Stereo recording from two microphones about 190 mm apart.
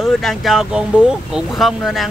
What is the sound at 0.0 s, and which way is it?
Speech, centre (ahead or behind).